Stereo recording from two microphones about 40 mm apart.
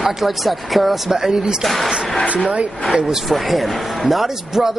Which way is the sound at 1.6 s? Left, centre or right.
Centre.